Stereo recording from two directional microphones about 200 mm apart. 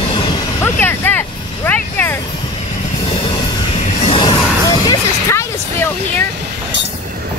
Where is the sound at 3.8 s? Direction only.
25° left (ahead or behind).